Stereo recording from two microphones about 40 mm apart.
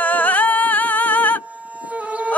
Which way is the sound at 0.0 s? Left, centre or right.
Left.